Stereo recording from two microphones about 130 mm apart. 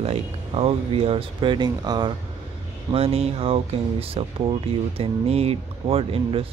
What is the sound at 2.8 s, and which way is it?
Speech, 50° right (ahead or behind).